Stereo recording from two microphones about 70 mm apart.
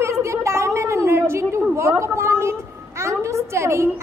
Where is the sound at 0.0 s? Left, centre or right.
Right.